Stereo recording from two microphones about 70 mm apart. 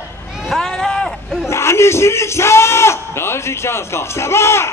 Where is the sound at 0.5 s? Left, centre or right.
Centre.